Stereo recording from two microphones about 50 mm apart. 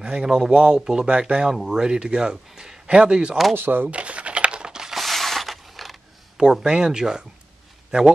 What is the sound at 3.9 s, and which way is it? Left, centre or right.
Crumpling, right.